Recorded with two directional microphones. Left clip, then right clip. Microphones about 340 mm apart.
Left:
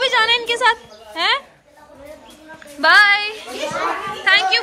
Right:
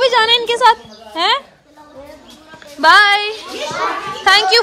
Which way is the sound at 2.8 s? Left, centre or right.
Centre.